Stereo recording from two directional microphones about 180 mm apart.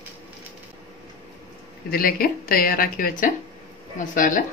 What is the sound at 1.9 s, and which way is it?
Speech, 55° left (ahead or behind).